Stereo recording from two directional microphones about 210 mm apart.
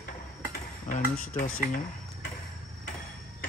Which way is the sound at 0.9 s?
40° left (ahead or behind).